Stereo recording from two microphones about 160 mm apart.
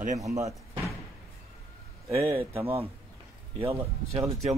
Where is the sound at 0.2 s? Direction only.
20° right (ahead or behind).